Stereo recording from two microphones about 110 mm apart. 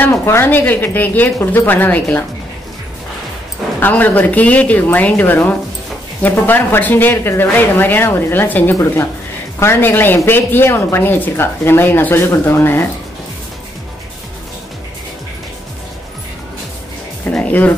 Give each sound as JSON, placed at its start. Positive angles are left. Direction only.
{"t": 0.0, "sound": "speech", "side_deg": 20}
{"t": 3.8, "sound": "a woman's voice", "side_deg": 15}
{"t": 17.3, "sound": "speech", "side_deg": 15}